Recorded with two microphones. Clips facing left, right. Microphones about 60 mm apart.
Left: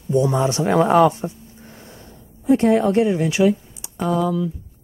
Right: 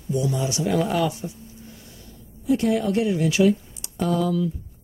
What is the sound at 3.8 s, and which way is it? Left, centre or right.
Speech, centre.